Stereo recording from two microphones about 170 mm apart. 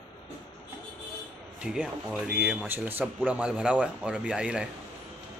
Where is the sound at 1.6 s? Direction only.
5° right (ahead or behind).